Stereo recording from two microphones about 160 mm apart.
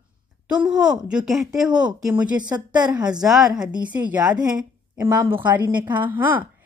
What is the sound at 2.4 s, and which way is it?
Speech, 25° right (ahead or behind).